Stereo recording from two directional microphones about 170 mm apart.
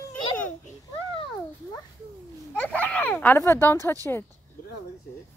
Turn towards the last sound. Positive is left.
turn(degrees=15)  # may be behind; listen again after turning